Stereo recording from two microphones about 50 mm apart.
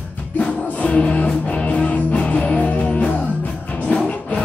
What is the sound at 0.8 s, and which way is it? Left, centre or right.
Music, left.